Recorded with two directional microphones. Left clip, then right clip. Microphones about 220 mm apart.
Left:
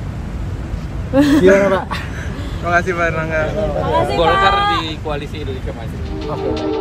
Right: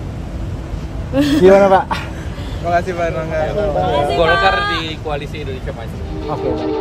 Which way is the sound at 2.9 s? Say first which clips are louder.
Left 2 dB; centre (ahead or behind).